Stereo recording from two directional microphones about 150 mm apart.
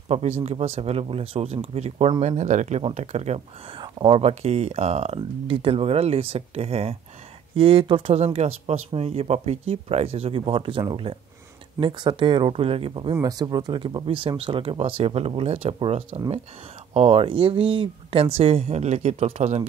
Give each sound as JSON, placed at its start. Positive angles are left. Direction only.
{"t": 0.1, "sound": "speech", "side_deg": -45}
{"t": 13.1, "sound": "speech", "side_deg": -25}